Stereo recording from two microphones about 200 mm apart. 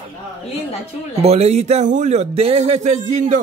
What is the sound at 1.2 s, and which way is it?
A man's voice, 30° right (ahead or behind).